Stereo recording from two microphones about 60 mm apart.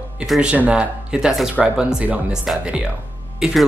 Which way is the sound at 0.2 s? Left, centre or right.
Centre.